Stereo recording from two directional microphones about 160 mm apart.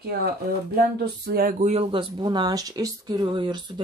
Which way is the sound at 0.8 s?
75° right (ahead or behind).